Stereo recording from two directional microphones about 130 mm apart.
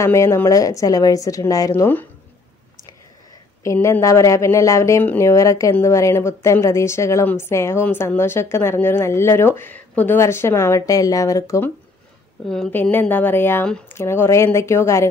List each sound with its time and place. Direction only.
0.0 s speech: 20° left (ahead or behind)
3.6 s speech: 20° left (ahead or behind)
12.7 s a woman's voice: 10° left (ahead or behind)